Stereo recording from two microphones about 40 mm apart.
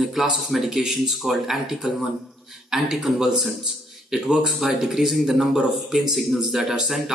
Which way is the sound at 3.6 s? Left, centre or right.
Centre.